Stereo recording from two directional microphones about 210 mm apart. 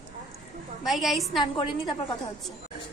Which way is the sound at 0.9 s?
Centre (ahead or behind).